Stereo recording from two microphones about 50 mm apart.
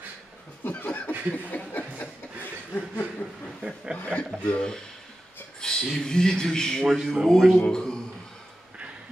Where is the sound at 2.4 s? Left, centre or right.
Left.